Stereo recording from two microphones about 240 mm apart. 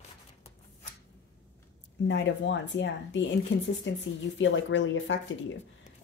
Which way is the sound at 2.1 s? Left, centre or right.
Left.